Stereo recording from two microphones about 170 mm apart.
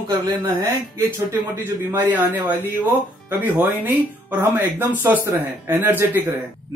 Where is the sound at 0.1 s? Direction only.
25° right (ahead or behind).